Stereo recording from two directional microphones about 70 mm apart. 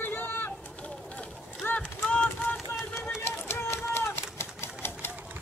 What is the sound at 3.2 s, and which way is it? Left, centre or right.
Typewriter, left.